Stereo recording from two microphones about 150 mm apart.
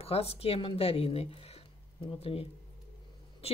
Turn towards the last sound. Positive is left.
turn(degrees=40)  # may be behind; listen again after turning